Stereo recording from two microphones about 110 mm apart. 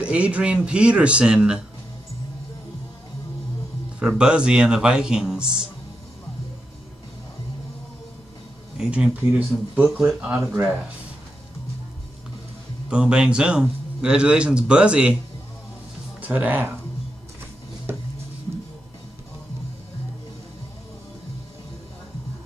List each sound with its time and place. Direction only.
0.0 s speech: 10° right (ahead or behind)
4.0 s speech: 5° right (ahead or behind)
8.7 s speech: 5° right (ahead or behind)
12.9 s speech: 10° right (ahead or behind)
16.2 s speech: 15° right (ahead or behind)